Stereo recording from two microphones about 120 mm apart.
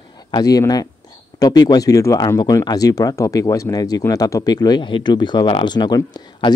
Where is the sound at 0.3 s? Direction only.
30° left (ahead or behind).